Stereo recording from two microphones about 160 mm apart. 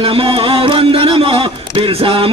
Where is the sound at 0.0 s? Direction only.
35° right (ahead or behind).